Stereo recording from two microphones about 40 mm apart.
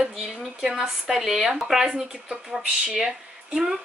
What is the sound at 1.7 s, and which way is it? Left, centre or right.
Speech, centre.